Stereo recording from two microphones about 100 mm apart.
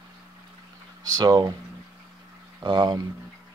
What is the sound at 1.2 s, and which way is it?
Speech, 45° right (ahead or behind).